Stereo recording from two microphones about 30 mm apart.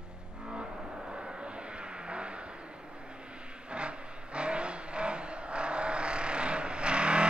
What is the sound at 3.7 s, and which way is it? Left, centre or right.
Vehicle, right.